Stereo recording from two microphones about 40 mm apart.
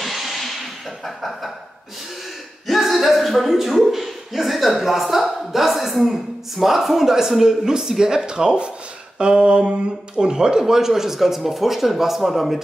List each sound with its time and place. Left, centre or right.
0.0 s music: centre
2.6 s a sound: centre
5.2 s speech: centre